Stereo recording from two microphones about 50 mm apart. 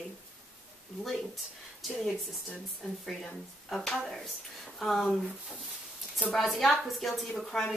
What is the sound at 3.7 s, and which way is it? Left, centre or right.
Speech, centre.